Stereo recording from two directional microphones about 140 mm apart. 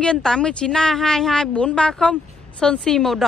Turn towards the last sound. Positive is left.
turn(degrees=5)  # may be behind; listen again after turning